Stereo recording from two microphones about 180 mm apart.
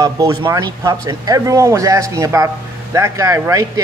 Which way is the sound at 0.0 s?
20° right (ahead or behind).